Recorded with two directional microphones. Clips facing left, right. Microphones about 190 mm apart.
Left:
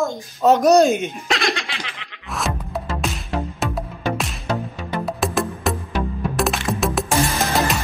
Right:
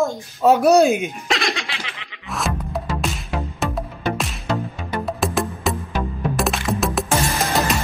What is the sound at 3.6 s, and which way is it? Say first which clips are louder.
Music: even; centre (ahead or behind).